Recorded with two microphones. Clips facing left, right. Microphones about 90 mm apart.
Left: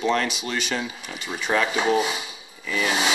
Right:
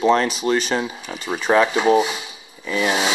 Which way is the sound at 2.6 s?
35° right (ahead or behind).